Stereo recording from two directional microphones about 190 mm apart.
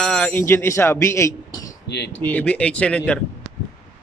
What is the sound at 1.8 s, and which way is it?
Speech, 65° left (ahead or behind).